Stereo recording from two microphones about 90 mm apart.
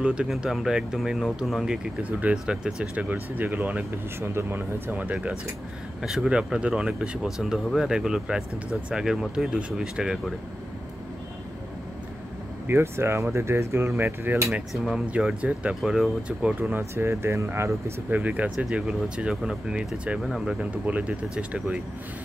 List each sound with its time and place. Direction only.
0.0 s speech: 10° right (ahead or behind)
2.0 s speech: 15° right (ahead or behind)
12.6 s speech: 25° right (ahead or behind)
14.7 s speech: centre (ahead or behind)
15.1 s speech: 10° right (ahead or behind)
16.7 s speech: 25° right (ahead or behind)
18.1 s speech: 15° right (ahead or behind)
20.7 s speech: 15° right (ahead or behind)